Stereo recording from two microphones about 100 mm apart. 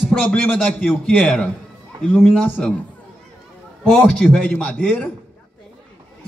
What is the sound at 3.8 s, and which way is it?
A man's voice, 5° left (ahead or behind).